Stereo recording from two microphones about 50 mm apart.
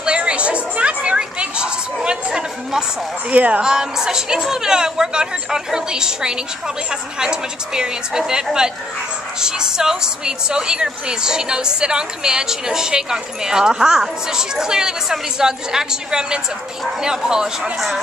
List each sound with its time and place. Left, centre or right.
0.0 s a sound: right
3.3 s speech: right
3.6 s a woman's voice: centre